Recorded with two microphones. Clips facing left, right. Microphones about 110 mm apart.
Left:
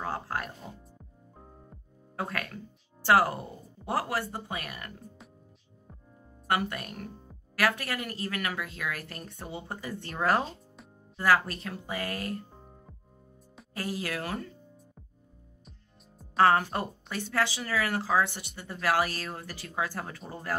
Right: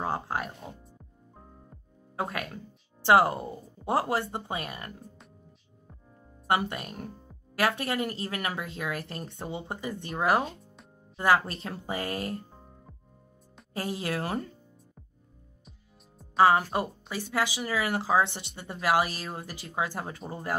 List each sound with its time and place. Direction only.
0.0 s music: 15° right (ahead or behind)
2.1 s speech: 20° right (ahead or behind)
6.4 s speech: 20° right (ahead or behind)
13.7 s speech: 25° right (ahead or behind)
16.2 s speech: 10° right (ahead or behind)